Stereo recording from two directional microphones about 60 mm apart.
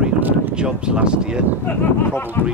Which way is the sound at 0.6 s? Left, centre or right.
Centre.